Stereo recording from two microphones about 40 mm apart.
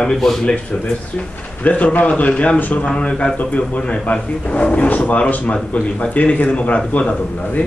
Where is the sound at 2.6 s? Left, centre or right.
Left.